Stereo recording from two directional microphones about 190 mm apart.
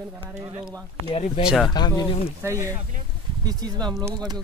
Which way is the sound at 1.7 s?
20° left (ahead or behind).